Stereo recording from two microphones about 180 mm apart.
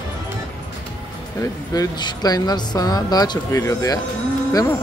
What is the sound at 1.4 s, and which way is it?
Speech, 20° left (ahead or behind).